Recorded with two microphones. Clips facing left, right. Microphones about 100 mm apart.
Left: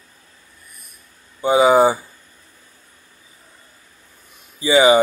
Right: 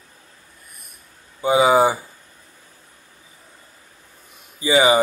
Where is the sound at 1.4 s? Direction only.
30° left (ahead or behind).